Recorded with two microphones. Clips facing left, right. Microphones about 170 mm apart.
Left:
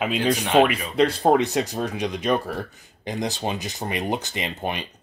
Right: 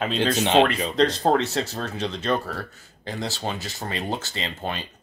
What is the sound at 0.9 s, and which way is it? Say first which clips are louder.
Speech: left 2 dB; 10° left (ahead or behind).